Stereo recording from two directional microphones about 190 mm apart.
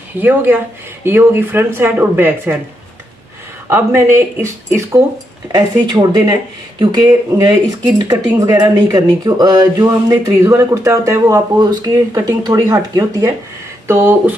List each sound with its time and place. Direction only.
0.2 s speech: 10° right (ahead or behind)
3.6 s speech: 15° right (ahead or behind)